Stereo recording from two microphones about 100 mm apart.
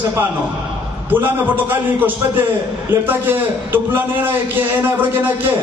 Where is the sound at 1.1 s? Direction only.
20° right (ahead or behind).